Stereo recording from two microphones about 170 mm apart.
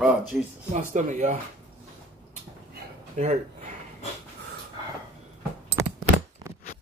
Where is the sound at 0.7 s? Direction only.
45° right (ahead or behind).